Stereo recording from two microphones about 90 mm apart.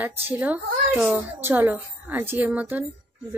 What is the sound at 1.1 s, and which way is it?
Speech, 25° right (ahead or behind).